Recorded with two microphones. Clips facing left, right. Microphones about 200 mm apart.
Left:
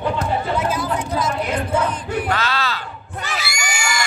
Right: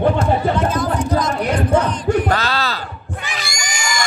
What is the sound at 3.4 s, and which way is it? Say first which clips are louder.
Crowd: left 1 dB; 5° left (ahead or behind).